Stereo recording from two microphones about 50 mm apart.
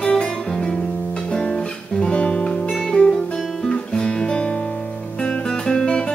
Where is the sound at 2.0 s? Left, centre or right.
Left.